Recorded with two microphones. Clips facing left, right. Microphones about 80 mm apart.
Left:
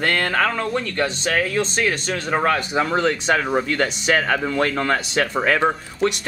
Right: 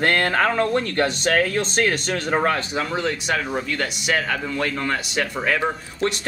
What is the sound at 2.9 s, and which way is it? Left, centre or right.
Speech, left.